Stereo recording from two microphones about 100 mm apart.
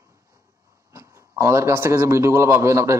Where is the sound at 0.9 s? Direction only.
30° right (ahead or behind).